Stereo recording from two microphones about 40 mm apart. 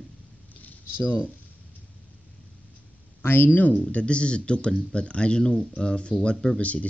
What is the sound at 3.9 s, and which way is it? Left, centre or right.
Speech, left.